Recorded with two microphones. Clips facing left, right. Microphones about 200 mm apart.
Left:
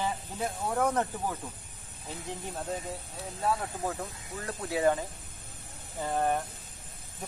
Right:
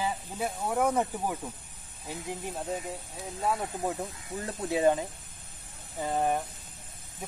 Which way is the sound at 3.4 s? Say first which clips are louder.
Right 1 dB; 15° right (ahead or behind).